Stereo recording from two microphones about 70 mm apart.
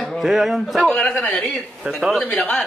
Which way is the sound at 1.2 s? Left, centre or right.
Left.